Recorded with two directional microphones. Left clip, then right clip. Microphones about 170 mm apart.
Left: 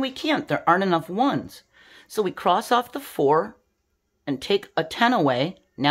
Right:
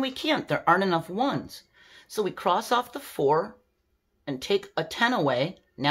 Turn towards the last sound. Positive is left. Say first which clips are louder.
# left 2 dB
turn(degrees=35)  # may be behind; listen again after turning